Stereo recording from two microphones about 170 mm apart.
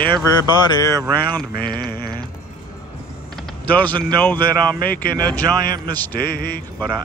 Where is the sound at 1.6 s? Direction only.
65° left (ahead or behind).